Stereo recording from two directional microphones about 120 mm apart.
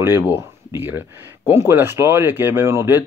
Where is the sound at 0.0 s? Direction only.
15° right (ahead or behind).